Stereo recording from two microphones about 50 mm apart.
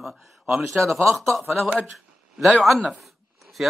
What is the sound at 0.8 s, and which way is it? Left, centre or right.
Speech, right.